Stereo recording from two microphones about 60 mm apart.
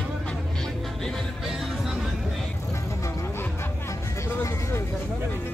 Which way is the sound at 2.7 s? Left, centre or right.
Left.